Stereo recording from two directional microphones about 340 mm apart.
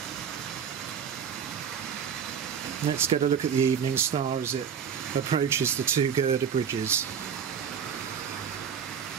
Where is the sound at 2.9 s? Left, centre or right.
Centre.